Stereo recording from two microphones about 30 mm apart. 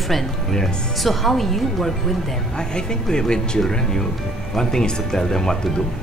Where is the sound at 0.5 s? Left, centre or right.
Left.